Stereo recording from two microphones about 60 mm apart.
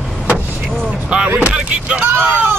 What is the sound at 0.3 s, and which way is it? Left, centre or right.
Vehicle, right.